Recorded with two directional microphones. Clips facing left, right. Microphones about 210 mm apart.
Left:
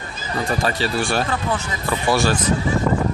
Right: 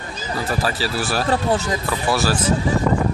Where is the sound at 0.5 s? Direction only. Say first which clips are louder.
Left 2 dB; 5° right (ahead or behind).